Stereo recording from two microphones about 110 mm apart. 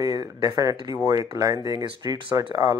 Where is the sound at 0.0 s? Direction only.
35° right (ahead or behind).